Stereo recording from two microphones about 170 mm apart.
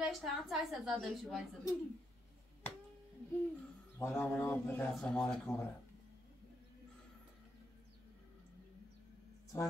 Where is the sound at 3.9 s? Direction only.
15° left (ahead or behind).